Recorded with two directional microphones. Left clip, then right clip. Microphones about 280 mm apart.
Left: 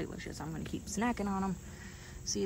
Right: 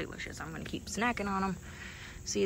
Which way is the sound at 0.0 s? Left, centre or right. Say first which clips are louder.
Right 2 dB; centre.